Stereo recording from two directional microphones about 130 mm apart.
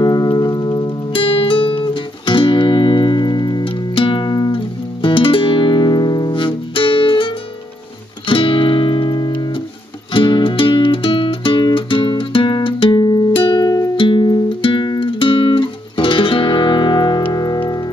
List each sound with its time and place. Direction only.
0.0 s music: 30° left (ahead or behind)
1.1 s music: 45° left (ahead or behind)